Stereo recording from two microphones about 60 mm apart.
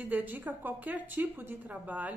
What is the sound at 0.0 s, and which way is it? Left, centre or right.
A woman's voice, right.